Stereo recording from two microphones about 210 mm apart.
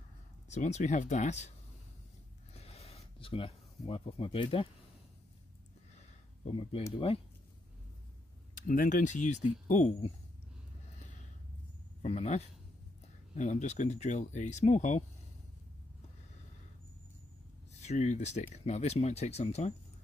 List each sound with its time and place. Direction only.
0.5 s speech: 35° left (ahead or behind)
2.5 s a sound: 30° left (ahead or behind)
3.2 s speech: 25° left (ahead or behind)
5.9 s a sound: 30° left (ahead or behind)
8.6 s speech: 40° left (ahead or behind)
12.0 s speech: 30° left (ahead or behind)
17.7 s speech: 35° left (ahead or behind)